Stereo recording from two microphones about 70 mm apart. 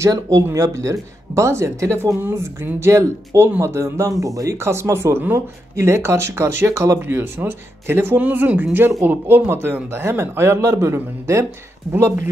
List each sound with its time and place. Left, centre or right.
0.1 s speech: right
0.5 s speech: right
2.1 s speech: right
4.1 s speech: right
8.2 s speech: right